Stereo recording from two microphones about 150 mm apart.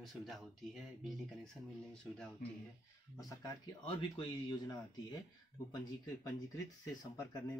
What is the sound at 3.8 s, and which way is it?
Speech, 35° left (ahead or behind).